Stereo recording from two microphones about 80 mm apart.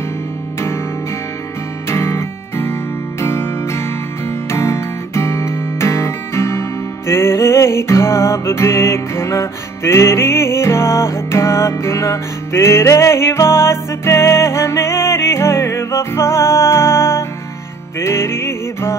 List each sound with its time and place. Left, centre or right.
1.9 s music: left